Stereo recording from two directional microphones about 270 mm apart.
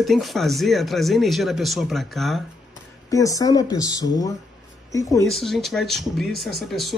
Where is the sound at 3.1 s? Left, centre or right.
Centre.